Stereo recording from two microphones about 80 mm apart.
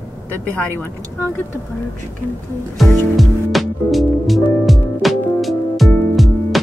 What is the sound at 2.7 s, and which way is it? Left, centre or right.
Music, centre.